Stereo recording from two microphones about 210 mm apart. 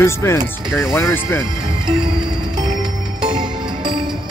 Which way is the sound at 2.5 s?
20° right (ahead or behind).